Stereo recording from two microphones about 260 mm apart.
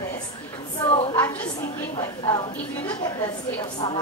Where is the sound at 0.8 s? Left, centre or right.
Left.